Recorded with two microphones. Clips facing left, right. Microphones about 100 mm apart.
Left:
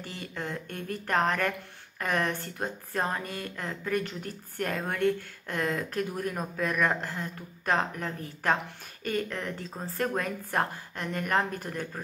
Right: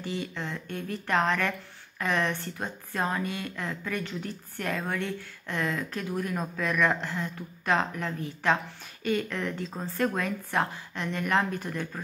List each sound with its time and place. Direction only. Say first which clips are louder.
0.0 s a woman's voice: right 3 dB; 45° left (ahead or behind)